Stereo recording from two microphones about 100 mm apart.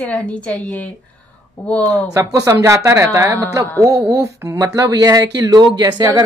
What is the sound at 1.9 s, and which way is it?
Speech, 30° right (ahead or behind).